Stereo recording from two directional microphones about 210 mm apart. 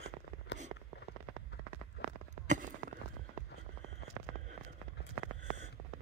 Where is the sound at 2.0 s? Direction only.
55° left (ahead or behind).